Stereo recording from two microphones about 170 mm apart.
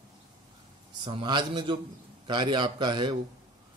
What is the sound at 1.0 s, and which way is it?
Speech, 25° right (ahead or behind).